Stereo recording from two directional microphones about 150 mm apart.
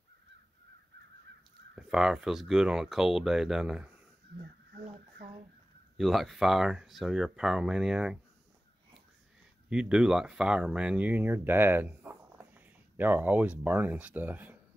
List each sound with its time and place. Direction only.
1.8 s speech: 5° right (ahead or behind)
5.9 s speech: centre (ahead or behind)
9.7 s speech: 5° right (ahead or behind)